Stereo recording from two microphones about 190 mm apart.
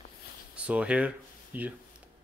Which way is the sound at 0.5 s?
5° right (ahead or behind).